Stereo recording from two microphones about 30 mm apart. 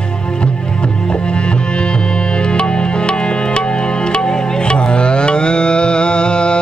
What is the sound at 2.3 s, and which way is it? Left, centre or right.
Music, left.